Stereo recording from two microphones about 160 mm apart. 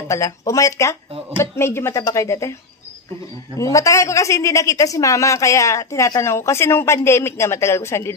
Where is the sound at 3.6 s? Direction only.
20° left (ahead or behind).